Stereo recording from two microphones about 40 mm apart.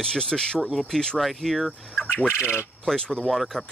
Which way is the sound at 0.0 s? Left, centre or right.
Left.